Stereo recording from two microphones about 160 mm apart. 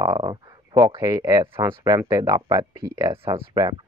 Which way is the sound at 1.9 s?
20° right (ahead or behind).